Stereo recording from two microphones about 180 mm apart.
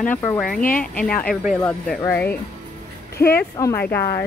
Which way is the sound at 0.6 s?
50° left (ahead or behind).